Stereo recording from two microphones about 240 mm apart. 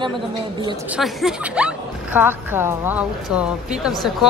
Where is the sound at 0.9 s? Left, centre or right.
Centre.